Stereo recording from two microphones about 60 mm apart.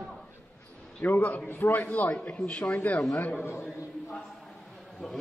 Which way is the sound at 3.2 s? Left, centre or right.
Left.